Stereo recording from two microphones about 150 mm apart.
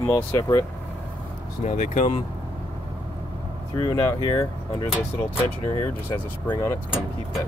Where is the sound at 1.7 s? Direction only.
60° left (ahead or behind).